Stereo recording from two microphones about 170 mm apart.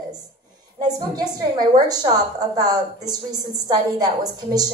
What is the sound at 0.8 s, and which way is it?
A woman's voice, 25° right (ahead or behind).